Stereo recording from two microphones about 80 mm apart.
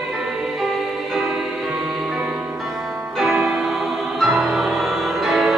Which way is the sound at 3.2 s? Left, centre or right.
Centre.